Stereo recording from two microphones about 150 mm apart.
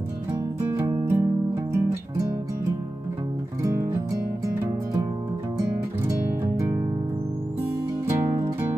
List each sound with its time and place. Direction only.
0.3 s music: 15° right (ahead or behind)
3.6 s music: 15° right (ahead or behind)
5.6 s music: 20° right (ahead or behind)
8.2 s music: 20° right (ahead or behind)